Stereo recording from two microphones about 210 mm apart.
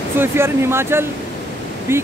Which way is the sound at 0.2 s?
10° right (ahead or behind).